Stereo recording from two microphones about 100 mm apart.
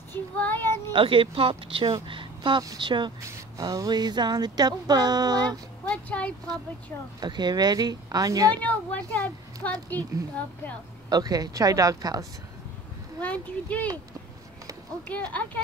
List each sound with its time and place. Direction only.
0.1 s child singing: 20° left (ahead or behind)
0.9 s speech: 60° right (ahead or behind)
2.0 s a sound: 55° right (ahead or behind)
2.8 s speech: 50° right (ahead or behind)
3.2 s speech: 30° right (ahead or behind)
5.9 s speech: 15° left (ahead or behind)
7.2 s a woman's voice: 45° right (ahead or behind)
8.5 s a woman's voice: 15° left (ahead or behind)
11.1 s a woman's voice: 40° right (ahead or behind)
13.2 s a woman's voice: 15° left (ahead or behind)
15.0 s a woman's voice: 15° left (ahead or behind)